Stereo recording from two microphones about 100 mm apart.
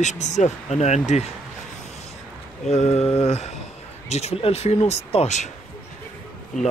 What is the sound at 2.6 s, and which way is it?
Speech, 90° left.